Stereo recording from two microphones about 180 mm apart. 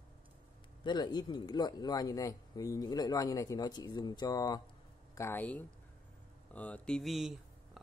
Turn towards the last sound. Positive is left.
turn(degrees=0)  # may be behind; listen again after turning